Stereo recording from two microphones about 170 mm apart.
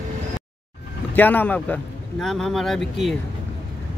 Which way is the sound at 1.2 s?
10° left (ahead or behind).